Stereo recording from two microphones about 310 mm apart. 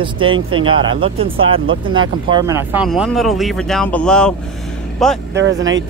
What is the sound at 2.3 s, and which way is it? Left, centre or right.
Speech, centre.